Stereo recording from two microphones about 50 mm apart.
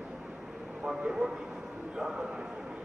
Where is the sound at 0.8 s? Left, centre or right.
Centre.